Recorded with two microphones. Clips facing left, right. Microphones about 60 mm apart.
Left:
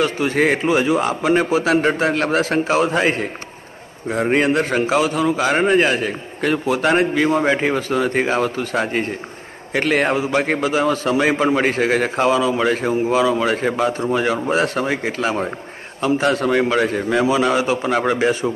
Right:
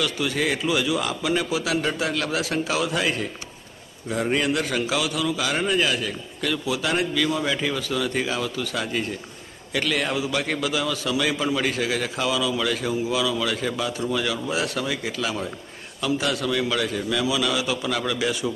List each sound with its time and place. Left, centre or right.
0.0 s a man's voice: left